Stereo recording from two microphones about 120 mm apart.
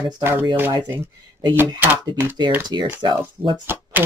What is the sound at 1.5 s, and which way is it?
Speech, 20° right (ahead or behind).